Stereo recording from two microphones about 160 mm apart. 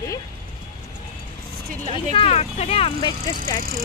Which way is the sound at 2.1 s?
40° left (ahead or behind).